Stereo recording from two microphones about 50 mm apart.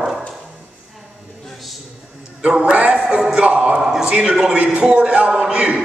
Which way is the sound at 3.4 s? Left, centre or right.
Right.